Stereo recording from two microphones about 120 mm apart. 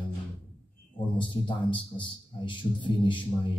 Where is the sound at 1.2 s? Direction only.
45° left (ahead or behind).